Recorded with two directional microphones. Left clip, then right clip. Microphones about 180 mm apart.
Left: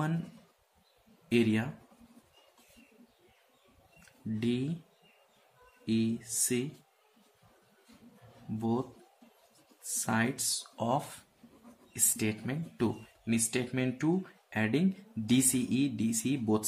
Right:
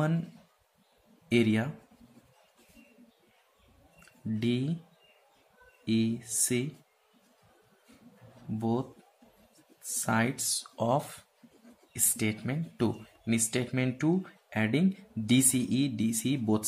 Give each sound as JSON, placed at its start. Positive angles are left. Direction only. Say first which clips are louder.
{"t": 1.3, "sound": "speech", "louder": "right 2 dB", "side_deg": -25}
{"t": 4.4, "sound": "speech", "louder": "right 2 dB", "side_deg": -25}
{"t": 5.9, "sound": "speech", "louder": "right 2 dB", "side_deg": -25}
{"t": 8.5, "sound": "speech", "louder": "right 2 dB", "side_deg": -20}
{"t": 9.8, "sound": "speech", "louder": "right 2 dB", "side_deg": -20}
{"t": 12.2, "sound": "speech", "louder": "right 2 dB", "side_deg": -20}